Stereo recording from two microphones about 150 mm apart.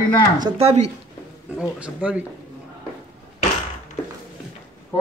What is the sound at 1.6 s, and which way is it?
Speech, 10° right (ahead or behind).